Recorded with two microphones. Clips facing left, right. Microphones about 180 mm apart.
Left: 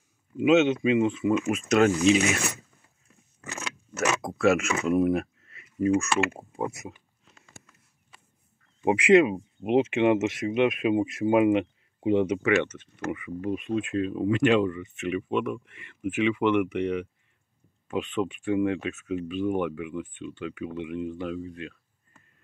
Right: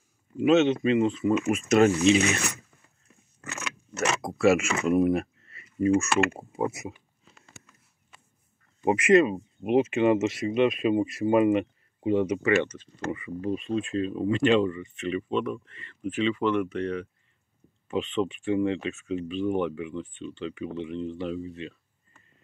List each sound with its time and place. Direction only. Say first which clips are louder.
0.4 s speech: even; 5° left (ahead or behind)
1.3 s speech: right 3 dB; 5° right (ahead or behind)
3.9 s speech: left 1 dB; centre (ahead or behind)
8.8 s speech: left 1 dB; 10° left (ahead or behind)
10.0 s speech: even; 65° left (ahead or behind)
10.9 s speech: even; 5° left (ahead or behind)
17.8 s speech: right 1 dB; centre (ahead or behind)